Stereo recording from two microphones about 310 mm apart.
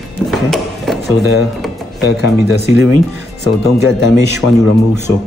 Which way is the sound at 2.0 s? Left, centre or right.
Left.